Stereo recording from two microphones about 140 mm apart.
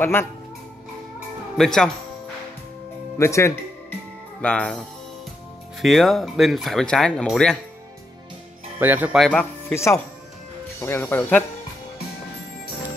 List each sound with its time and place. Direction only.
0.0 s speech: 15° left (ahead or behind)
1.6 s speech: 5° left (ahead or behind)
3.2 s speech: 20° left (ahead or behind)
4.4 s speech: 10° left (ahead or behind)
8.7 s speech: 15° right (ahead or behind)
9.2 s speech: 10° left (ahead or behind)
10.8 s speech: 15° left (ahead or behind)